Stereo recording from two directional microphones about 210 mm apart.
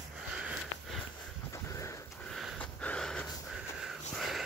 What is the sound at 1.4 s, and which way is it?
Horse, 15° left (ahead or behind).